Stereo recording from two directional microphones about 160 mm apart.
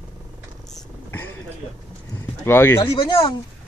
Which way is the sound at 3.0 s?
35° left (ahead or behind).